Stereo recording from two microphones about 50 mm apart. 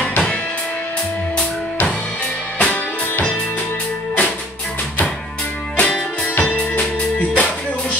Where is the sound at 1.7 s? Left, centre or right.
Left.